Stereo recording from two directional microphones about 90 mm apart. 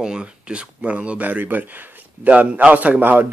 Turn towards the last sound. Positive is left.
turn(degrees=-20)  # may be behind; listen again after turning